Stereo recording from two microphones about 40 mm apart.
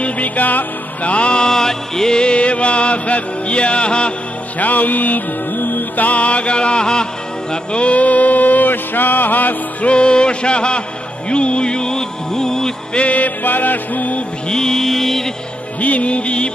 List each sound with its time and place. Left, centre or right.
0.0 s music: left
1.1 s music: left
4.6 s music: left; by 7.1 s centre
7.7 s a sound: left
9.8 s a sound: left
11.2 s music: left
12.9 s music: left
14.5 s music: centre
15.8 s music: left